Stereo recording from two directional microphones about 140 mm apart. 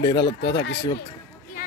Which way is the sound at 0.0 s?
35° left (ahead or behind).